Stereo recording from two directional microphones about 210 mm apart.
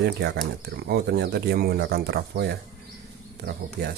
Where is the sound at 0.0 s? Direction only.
55° right (ahead or behind).